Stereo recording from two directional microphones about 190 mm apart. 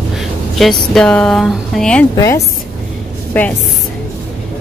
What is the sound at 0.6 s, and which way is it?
Speech, centre (ahead or behind).